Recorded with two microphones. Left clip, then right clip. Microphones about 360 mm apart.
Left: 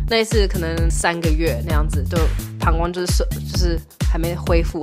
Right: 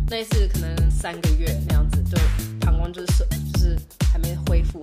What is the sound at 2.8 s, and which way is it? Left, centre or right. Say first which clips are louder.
Speech: left 10 dB; left.